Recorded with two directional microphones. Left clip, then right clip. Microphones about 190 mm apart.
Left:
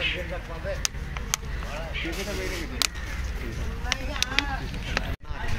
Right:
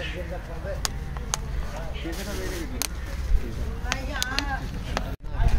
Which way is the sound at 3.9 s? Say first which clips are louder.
Even; 25° right (ahead or behind).